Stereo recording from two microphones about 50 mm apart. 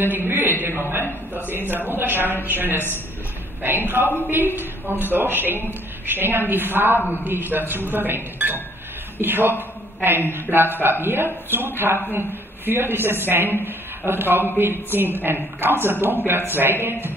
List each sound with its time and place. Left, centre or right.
0.0 s a man's voice: right